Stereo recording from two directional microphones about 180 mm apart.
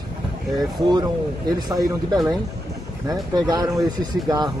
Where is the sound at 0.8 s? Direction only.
25° right (ahead or behind).